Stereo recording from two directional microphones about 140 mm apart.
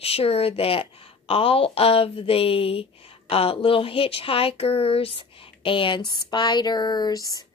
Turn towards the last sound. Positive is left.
turn(degrees=25)  # may be behind; listen again after turning